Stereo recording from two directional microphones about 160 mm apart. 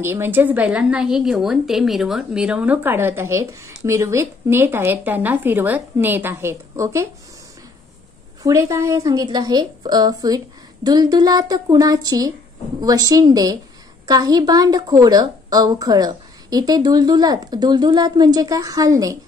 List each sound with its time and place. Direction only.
0.0 s a woman's voice: 15° right (ahead or behind)
8.4 s a woman's voice: 20° right (ahead or behind)